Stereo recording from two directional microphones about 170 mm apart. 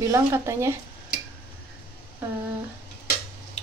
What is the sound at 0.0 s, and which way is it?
Speech, 15° right (ahead or behind).